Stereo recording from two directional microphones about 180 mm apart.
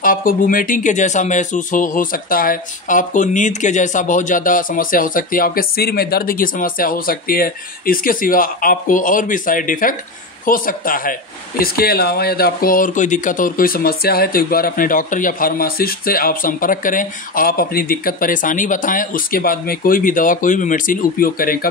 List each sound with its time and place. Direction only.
0.0 s speech: 50° left (ahead or behind)